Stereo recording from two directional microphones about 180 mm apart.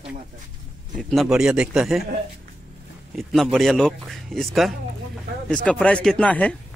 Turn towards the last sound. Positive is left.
turn(degrees=5)  # may be behind; listen again after turning